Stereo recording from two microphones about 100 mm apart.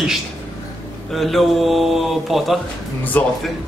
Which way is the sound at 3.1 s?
15° left (ahead or behind).